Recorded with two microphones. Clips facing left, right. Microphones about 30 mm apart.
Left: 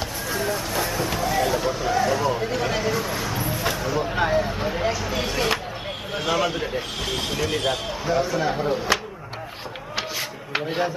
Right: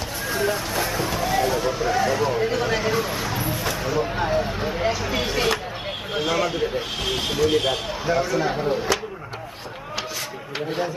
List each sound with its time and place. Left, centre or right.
0.3 s music: centre
1.4 s speech: centre
3.7 s a sound: centre
4.3 s speech: centre
10.5 s speech: centre